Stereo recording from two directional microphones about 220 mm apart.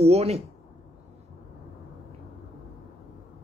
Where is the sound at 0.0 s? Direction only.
30° right (ahead or behind).